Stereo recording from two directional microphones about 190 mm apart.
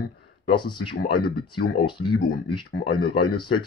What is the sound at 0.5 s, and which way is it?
Speech, 25° left (ahead or behind).